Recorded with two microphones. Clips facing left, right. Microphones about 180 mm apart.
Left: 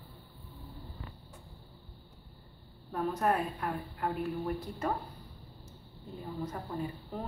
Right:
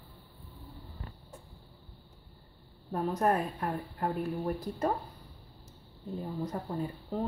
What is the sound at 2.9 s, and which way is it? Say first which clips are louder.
A woman's voice: right 2 dB; 35° right (ahead or behind).